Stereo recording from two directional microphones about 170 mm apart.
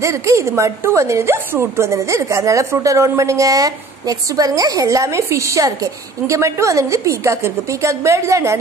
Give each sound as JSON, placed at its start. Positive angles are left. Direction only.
{"t": 0.0, "sound": "a woman's voice", "side_deg": -15}